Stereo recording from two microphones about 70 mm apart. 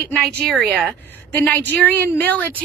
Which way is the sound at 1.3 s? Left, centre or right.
Left.